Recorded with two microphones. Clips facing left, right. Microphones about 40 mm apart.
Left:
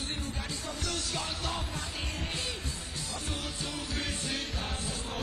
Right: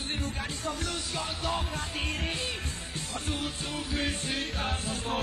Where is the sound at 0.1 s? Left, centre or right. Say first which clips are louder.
Right 3 dB; right.